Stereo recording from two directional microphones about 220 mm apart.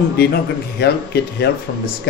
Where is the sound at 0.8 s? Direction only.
50° left (ahead or behind).